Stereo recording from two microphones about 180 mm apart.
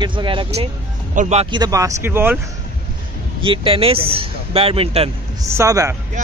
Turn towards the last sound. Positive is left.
turn(degrees=-15)  # may be behind; listen again after turning